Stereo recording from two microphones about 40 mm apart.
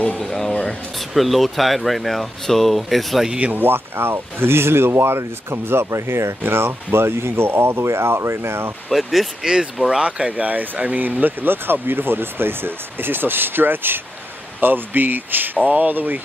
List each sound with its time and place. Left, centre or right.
0.2 s speech: centre
3.5 s speech: right
8.9 s speech: centre
9.4 s speech: right
10.4 s speech: right
11.4 s speech: right